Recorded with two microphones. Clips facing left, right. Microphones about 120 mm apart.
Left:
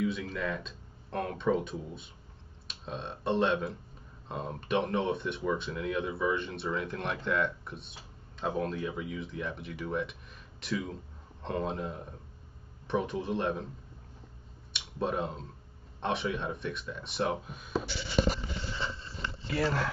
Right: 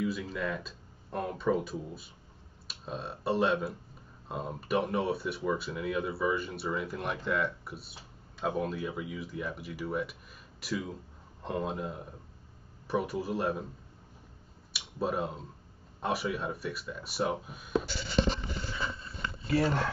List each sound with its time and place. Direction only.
0.0 s speech: 5° right (ahead or behind)
14.7 s a sound: 5° right (ahead or behind)
16.0 s speech: 5° right (ahead or behind)
19.5 s speech: 30° right (ahead or behind)